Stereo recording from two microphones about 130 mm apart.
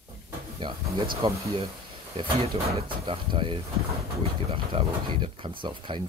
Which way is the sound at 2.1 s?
50° right (ahead or behind).